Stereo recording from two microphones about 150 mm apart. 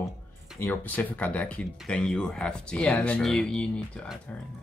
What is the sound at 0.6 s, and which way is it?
Speech, 10° left (ahead or behind).